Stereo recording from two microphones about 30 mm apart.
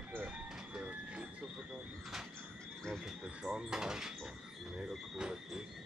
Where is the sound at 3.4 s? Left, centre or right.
Right.